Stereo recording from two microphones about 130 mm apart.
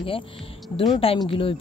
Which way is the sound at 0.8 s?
45° left (ahead or behind).